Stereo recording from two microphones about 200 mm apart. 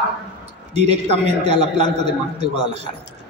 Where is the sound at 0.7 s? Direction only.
35° right (ahead or behind).